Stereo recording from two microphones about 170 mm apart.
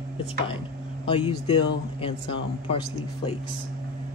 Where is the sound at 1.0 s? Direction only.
30° left (ahead or behind).